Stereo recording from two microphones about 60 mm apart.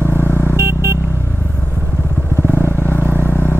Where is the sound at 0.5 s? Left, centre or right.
Right.